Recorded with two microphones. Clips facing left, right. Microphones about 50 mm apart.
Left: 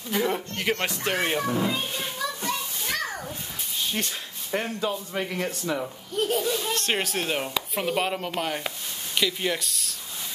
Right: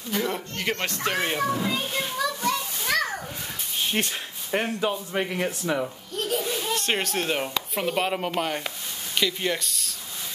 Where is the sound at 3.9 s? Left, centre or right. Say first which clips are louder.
Right 3 dB; right.